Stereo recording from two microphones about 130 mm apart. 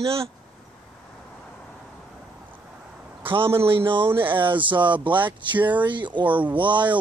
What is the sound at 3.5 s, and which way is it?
Speech, 20° right (ahead or behind).